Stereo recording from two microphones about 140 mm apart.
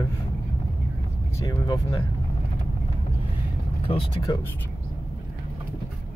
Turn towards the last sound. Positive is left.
turn(degrees=30)  # may be behind; listen again after turning